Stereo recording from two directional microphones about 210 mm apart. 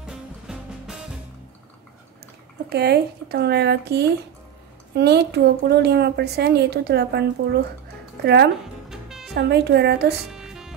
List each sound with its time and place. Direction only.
0.0 s music: 5° right (ahead or behind)
2.7 s a woman's voice: 50° right (ahead or behind)
8.8 s music: centre (ahead or behind)
9.3 s a woman's voice: 55° right (ahead or behind)
10.3 s music: centre (ahead or behind)